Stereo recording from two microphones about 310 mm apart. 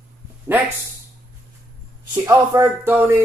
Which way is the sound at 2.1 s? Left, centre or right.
Centre.